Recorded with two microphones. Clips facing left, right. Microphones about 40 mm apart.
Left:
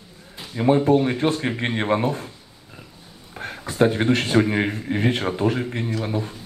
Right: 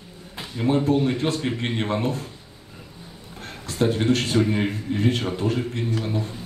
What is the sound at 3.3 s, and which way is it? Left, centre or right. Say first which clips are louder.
A man's voice: left 4 dB; left.